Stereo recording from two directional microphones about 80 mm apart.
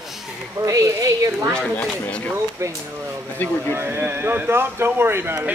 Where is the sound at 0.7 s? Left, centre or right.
Right.